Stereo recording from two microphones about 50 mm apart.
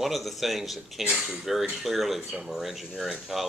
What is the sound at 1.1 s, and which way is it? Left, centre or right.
Speech, centre.